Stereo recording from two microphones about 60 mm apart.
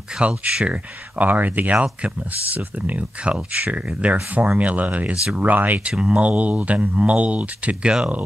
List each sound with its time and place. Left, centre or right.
0.2 s speech: centre
5.9 s speech: centre